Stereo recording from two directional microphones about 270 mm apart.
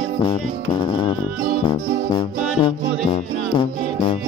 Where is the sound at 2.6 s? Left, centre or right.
Centre.